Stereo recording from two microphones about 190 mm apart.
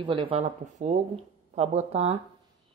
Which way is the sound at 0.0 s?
25° right (ahead or behind).